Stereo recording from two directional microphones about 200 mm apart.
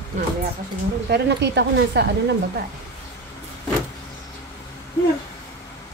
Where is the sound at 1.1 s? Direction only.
55° right (ahead or behind).